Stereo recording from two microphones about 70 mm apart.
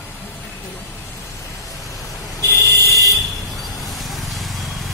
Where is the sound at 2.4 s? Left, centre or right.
Left.